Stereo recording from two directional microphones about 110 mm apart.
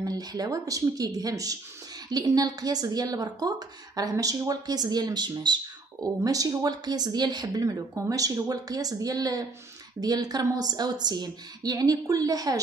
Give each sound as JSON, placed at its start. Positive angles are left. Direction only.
{"t": 0.0, "sound": "a woman's voice", "side_deg": -35}